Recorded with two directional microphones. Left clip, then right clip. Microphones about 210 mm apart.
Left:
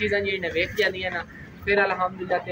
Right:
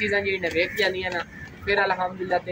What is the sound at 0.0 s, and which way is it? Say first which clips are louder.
Speech: right 1 dB; 5° left (ahead or behind).